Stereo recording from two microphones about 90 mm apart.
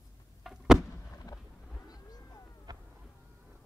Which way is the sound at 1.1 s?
40° left (ahead or behind).